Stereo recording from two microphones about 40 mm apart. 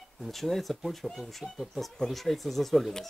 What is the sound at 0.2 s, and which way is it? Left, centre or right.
Speech, centre.